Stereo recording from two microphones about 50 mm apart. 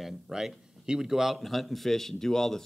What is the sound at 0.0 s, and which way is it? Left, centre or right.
A man's voice, centre.